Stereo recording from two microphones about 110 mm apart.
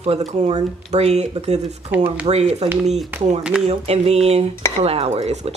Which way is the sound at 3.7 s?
65° right (ahead or behind).